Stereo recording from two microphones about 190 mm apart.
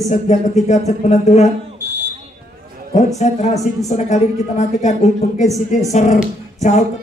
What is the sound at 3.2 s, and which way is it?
Speech, 40° left (ahead or behind).